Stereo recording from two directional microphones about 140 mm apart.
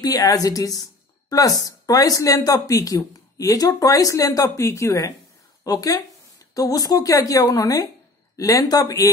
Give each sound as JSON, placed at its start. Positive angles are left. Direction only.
{"t": 0.0, "sound": "speech", "side_deg": 25}